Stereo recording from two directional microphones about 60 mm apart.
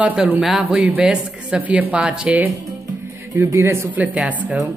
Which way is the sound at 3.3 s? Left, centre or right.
Right.